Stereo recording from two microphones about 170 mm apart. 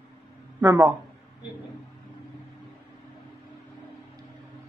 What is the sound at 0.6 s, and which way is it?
Speech, 20° right (ahead or behind).